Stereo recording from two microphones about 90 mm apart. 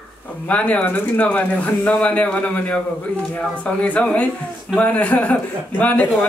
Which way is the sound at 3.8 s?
15° left (ahead or behind).